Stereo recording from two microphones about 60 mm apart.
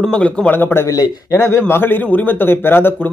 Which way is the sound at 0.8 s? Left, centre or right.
Left.